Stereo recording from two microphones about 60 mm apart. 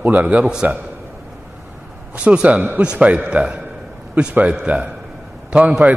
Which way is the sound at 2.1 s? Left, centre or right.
Centre.